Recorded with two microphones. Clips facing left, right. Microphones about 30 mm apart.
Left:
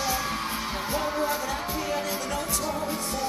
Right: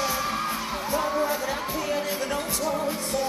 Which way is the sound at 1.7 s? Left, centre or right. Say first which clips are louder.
Right 1 dB; centre.